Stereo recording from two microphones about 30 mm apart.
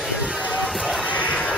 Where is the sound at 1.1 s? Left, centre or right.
Left.